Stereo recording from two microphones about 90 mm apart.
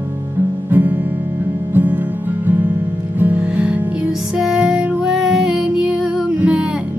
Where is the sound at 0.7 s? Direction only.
20° right (ahead or behind).